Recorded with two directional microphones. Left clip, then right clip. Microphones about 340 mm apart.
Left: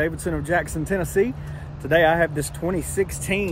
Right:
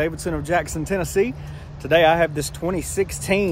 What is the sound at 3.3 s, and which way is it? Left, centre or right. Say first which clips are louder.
Speech: right 6 dB; right.